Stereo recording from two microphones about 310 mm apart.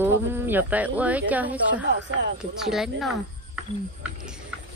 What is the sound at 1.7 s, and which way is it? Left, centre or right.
Speech, right.